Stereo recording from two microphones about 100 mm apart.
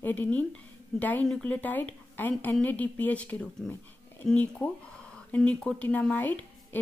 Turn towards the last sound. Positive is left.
turn(degrees=20)  # may be behind; listen again after turning